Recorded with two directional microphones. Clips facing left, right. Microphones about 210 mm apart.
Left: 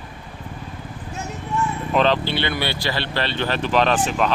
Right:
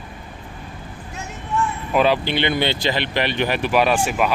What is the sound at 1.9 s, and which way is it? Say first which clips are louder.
Speech: right 1 dB; 10° right (ahead or behind).